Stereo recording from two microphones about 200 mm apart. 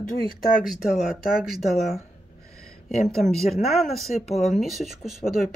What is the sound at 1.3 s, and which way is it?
Speech, centre (ahead or behind).